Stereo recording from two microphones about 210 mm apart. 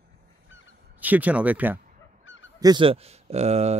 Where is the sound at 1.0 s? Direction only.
10° right (ahead or behind).